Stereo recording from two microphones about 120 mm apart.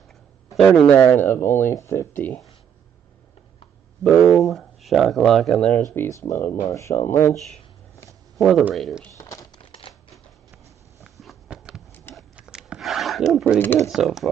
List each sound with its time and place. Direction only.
0.6 s speech: 5° left (ahead or behind)
4.0 s speech: 5° left (ahead or behind)
5.9 s speech: 25° left (ahead or behind)
8.4 s speech: centre (ahead or behind)
9.1 s crumpling: 25° left (ahead or behind)
9.6 s typewriter: 45° left (ahead or behind)
11.1 s a sound: centre (ahead or behind)
13.6 s speech: 15° left (ahead or behind)
13.8 s speech: centre (ahead or behind)